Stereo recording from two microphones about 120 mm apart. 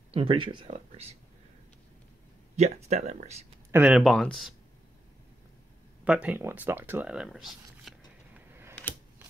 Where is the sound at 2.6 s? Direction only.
65° right (ahead or behind).